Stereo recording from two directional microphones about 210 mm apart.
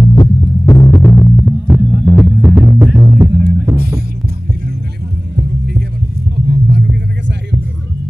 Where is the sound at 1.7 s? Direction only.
5° right (ahead or behind).